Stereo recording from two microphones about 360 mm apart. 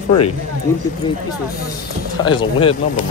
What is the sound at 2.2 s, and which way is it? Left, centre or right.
Speech, centre.